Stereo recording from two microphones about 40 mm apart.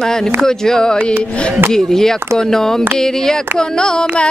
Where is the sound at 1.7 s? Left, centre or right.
Centre.